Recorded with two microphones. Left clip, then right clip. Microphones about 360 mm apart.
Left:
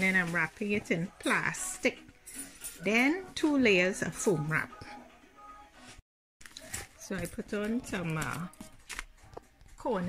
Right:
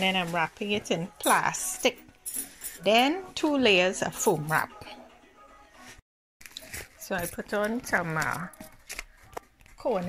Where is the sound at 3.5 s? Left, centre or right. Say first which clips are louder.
Right 4 dB; right.